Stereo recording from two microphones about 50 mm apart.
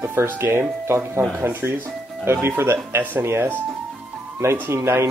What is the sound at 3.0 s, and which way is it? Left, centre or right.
Speech, right.